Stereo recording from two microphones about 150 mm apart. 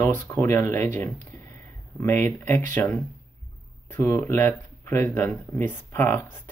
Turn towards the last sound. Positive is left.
turn(degrees=15)  # may be behind; listen again after turning